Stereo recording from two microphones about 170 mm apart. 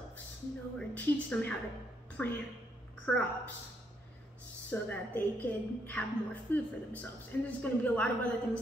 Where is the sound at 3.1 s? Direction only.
10° left (ahead or behind).